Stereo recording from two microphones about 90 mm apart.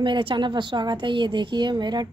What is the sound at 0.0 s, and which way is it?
Speech, 65° right (ahead or behind).